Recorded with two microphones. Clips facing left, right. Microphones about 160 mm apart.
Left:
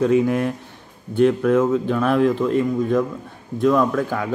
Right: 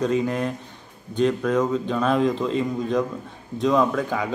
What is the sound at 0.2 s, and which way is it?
Speech, 10° left (ahead or behind).